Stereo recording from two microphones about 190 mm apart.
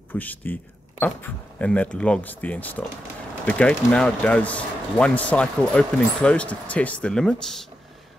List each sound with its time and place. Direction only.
0.1 s speech: 10° left (ahead or behind)